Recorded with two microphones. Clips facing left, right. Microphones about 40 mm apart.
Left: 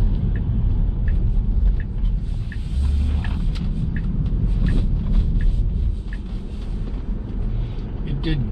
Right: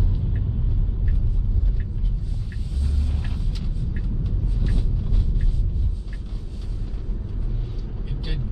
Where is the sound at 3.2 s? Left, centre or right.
Left.